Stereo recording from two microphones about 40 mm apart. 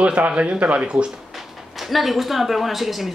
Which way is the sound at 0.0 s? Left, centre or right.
Right.